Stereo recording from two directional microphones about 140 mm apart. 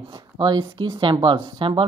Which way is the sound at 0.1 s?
35° right (ahead or behind).